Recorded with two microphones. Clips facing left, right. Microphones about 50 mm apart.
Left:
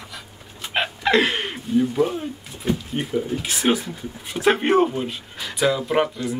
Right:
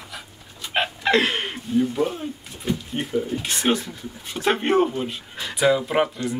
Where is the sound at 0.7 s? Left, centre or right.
Centre.